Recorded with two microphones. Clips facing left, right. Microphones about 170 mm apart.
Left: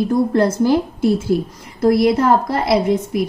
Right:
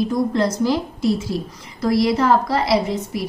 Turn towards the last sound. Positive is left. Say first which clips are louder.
# left 4 dB
turn(degrees=50)  # may be behind; listen again after turning